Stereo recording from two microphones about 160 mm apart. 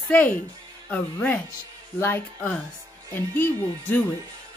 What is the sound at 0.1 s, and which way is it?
Speech, 10° left (ahead or behind).